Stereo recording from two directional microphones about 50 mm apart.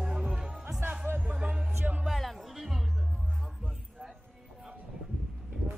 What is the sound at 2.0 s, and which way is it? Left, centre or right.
Music, centre.